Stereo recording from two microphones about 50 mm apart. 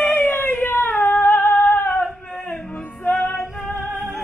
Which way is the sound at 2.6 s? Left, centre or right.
Left.